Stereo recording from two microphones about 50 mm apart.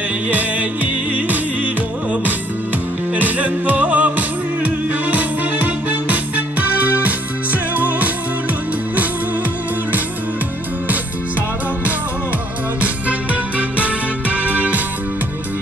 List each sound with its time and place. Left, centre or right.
0.3 s music: right
3.2 s music: right
12.8 s music: right